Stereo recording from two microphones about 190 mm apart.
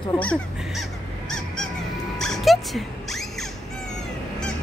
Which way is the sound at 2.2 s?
Centre (ahead or behind).